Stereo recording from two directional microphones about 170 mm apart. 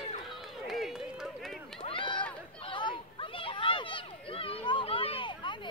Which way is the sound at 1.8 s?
30° left (ahead or behind).